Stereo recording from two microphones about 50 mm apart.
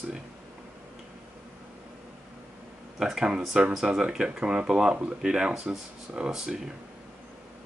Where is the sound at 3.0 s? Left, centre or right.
Centre.